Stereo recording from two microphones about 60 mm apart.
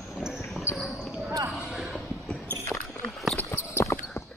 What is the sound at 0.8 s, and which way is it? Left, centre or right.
Basketball bounce, centre.